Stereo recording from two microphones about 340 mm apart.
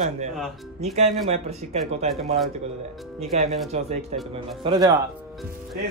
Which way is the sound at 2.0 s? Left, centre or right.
Centre.